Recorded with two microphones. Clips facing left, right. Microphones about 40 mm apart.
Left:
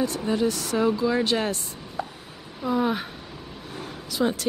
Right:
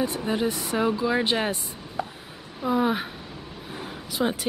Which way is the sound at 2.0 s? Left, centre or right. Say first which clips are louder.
Right 1 dB; centre.